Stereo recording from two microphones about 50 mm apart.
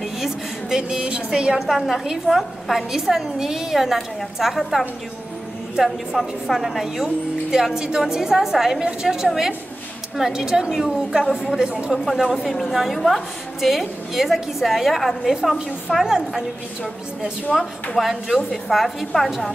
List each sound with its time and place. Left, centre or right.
0.0 s a sound: centre
1.7 s a woman's voice: centre
11.9 s a woman's voice: centre
17.5 s a woman's voice: centre